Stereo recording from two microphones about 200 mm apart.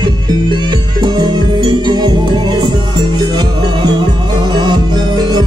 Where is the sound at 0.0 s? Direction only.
20° right (ahead or behind).